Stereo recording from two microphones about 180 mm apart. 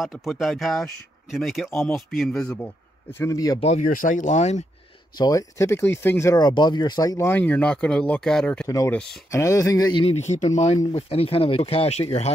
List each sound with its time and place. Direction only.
0.0 s speech: centre (ahead or behind)
3.1 s speech: 15° left (ahead or behind)
3.6 s speech: 45° left (ahead or behind)
5.1 s speech: 20° left (ahead or behind); by 8.6 s 5° left (ahead or behind)
8.6 s speech: 15° left (ahead or behind)
10.0 s speech: 40° left (ahead or behind)